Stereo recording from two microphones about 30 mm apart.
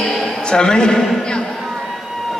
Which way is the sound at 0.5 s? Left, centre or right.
Left.